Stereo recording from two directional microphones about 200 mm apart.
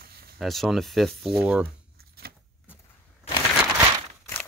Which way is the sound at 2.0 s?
50° right (ahead or behind).